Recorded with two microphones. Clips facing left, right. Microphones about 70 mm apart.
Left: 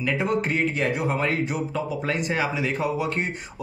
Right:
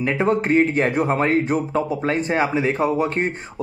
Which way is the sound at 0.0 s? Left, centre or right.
Right.